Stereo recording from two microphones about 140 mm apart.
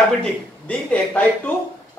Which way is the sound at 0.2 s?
10° left (ahead or behind).